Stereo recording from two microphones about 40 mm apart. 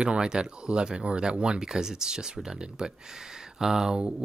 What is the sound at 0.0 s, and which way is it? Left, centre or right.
Speech, right.